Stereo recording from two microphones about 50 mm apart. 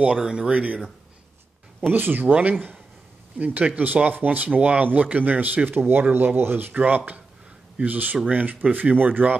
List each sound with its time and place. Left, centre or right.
0.2 s speech: centre
1.8 s speech: right
5.7 s speech: right
7.8 s speech: right